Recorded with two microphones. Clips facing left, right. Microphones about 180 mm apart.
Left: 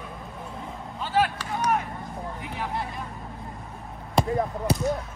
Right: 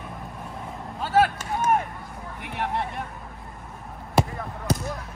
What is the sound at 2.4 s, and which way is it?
Speech, 65° right (ahead or behind).